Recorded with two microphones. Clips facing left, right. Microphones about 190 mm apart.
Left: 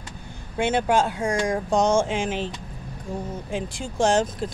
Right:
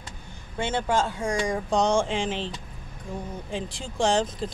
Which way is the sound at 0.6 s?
10° left (ahead or behind).